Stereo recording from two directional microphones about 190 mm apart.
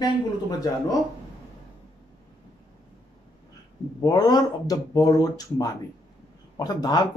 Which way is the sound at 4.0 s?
20° left (ahead or behind).